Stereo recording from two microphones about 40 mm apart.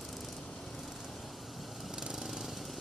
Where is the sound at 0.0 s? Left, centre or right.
Centre.